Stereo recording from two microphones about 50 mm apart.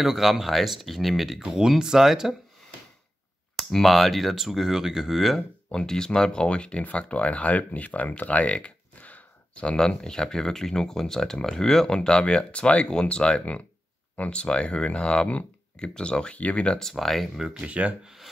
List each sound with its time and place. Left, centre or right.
0.0 s speech: centre
3.5 s speech: centre
5.7 s speech: centre
9.7 s speech: centre
16.8 s speech: centre
17.6 s speech: right
18.0 s a sound: centre